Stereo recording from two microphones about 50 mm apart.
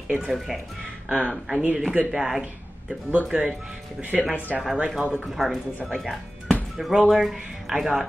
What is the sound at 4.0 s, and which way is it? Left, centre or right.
Speech, right.